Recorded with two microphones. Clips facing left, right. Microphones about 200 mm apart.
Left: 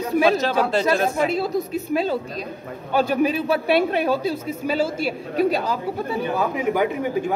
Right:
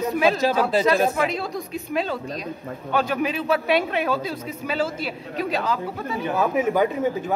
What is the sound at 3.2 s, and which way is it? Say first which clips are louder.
Speech: left 3 dB; 35° left (ahead or behind).